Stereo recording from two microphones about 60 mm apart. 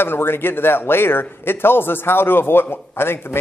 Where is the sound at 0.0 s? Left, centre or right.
Left.